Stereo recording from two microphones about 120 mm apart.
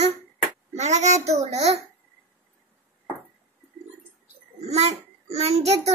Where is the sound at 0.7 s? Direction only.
70° right (ahead or behind).